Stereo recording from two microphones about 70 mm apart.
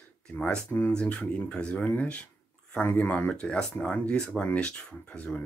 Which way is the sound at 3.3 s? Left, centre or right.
Centre.